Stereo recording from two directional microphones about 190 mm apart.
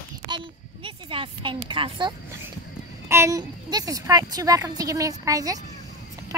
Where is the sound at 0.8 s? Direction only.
25° right (ahead or behind).